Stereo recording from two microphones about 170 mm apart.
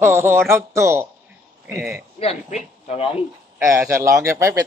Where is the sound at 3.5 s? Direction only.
15° right (ahead or behind).